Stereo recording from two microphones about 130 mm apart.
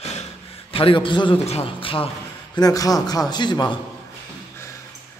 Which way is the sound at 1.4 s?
50° left (ahead or behind).